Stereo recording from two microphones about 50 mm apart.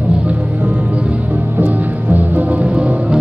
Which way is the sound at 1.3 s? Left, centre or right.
Right.